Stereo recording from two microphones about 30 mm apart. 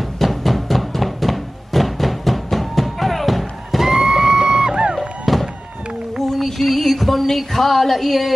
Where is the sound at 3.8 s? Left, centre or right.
Centre.